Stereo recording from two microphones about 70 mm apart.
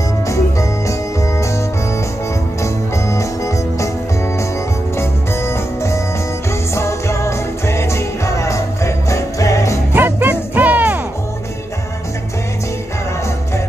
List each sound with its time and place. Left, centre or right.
0.3 s music: left
2.6 s music: left
4.9 s music: left
9.9 s music: right